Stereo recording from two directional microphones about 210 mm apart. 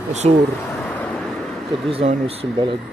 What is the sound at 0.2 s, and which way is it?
Speech, 30° right (ahead or behind).